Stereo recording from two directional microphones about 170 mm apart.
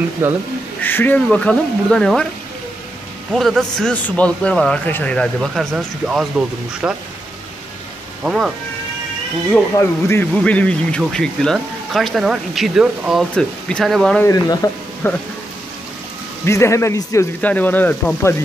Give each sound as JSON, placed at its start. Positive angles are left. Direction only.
{"t": 0.2, "sound": "speech", "side_deg": -10}
{"t": 0.8, "sound": "speech", "side_deg": 10}
{"t": 3.3, "sound": "speech", "side_deg": 0}
{"t": 8.2, "sound": "speech", "side_deg": -5}
{"t": 9.5, "sound": "speech", "side_deg": 15}
{"t": 14.2, "sound": "speech", "side_deg": 20}
{"t": 16.4, "sound": "speech", "side_deg": 15}